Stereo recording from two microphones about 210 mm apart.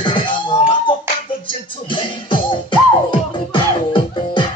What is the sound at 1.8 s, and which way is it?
Music, 25° left (ahead or behind).